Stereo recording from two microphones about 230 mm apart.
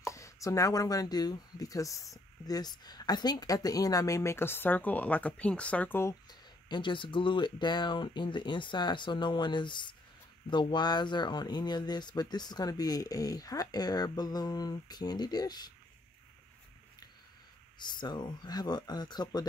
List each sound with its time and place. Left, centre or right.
0.0 s speech: centre
6.7 s speech: left
17.7 s speech: centre